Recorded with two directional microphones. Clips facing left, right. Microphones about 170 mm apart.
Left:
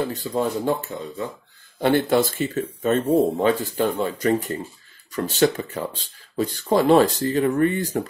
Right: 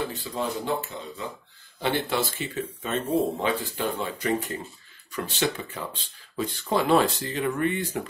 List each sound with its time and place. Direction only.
0.1 s speech: 40° left (ahead or behind)